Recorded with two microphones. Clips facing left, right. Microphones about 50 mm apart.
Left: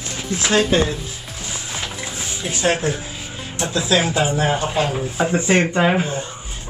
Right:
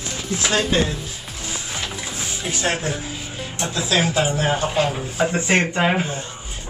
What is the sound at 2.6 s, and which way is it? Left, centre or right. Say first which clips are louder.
Speech: left 5 dB; left.